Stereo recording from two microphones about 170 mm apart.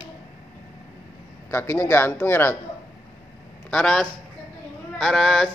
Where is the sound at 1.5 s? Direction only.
15° left (ahead or behind).